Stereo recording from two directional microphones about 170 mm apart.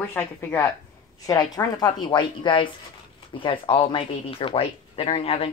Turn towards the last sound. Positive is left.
turn(degrees=35)  # may be behind; listen again after turning